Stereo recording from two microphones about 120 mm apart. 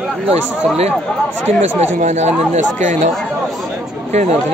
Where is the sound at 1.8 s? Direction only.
70° right (ahead or behind).